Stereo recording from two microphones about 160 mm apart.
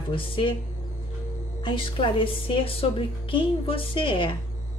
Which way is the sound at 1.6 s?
30° left (ahead or behind).